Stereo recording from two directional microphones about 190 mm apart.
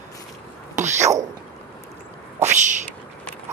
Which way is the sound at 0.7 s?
40° right (ahead or behind).